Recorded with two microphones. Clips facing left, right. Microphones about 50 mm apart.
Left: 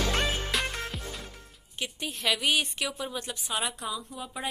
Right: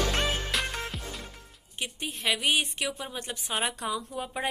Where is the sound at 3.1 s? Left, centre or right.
Right.